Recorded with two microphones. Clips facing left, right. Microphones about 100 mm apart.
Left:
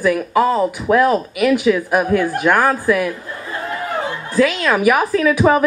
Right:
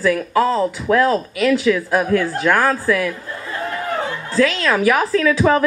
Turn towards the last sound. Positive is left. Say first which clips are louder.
# left 1 dB
turn(degrees=20)  # may be behind; listen again after turning